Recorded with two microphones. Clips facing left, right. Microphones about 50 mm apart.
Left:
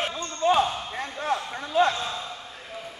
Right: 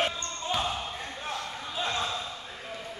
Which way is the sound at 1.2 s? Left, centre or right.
Left.